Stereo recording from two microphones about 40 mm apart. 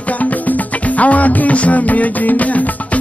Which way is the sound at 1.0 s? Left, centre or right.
Left.